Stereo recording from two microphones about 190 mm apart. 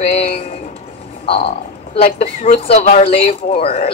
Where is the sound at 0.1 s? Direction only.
30° left (ahead or behind).